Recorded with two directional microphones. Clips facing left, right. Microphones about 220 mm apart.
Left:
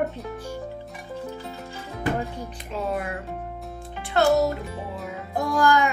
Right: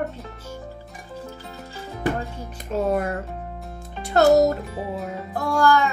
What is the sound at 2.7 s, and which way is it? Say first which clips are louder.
Speech: right 6 dB; 45° right (ahead or behind).